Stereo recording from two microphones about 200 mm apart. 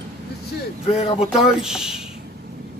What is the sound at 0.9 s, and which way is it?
Speech, 30° left (ahead or behind).